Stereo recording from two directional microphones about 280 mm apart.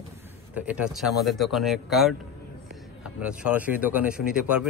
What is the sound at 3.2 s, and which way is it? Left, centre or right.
Speech, centre.